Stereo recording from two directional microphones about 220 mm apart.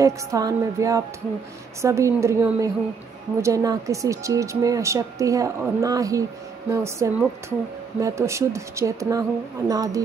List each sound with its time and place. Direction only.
0.0 s speech: 15° right (ahead or behind)